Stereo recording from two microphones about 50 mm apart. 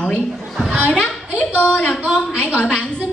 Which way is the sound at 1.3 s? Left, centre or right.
Left.